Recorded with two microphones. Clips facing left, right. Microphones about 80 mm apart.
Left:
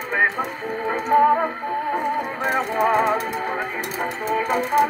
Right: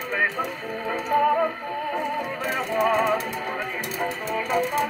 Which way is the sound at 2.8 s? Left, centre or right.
Left.